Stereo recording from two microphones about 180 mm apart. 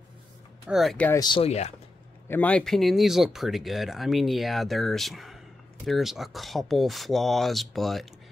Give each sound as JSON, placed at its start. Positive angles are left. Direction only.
{"t": 0.7, "sound": "speech", "side_deg": 0}
{"t": 1.2, "sound": "speech", "side_deg": 30}
{"t": 2.2, "sound": "speech", "side_deg": 10}